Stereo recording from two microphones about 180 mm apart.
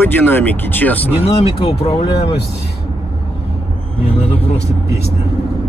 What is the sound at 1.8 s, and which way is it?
Speech, 35° left (ahead or behind).